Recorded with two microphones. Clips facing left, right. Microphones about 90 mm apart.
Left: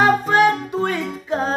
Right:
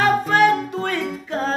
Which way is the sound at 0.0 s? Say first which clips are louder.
Left 1 dB; 15° left (ahead or behind).